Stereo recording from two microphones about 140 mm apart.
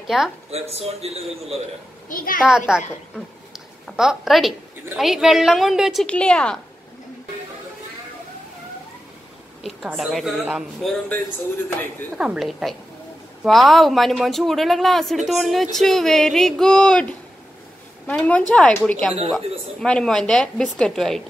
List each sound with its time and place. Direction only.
0.0 s speech: 5° right (ahead or behind)
0.5 s a man's voice: 45° right (ahead or behind)
2.0 s a woman's voice: 80° left
2.4 s a woman's voice: 5° right (ahead or behind)
6.0 s a woman's voice: 5° left (ahead or behind)
9.6 s a woman's voice: centre (ahead or behind)
12.2 s a woman's voice: 5° right (ahead or behind)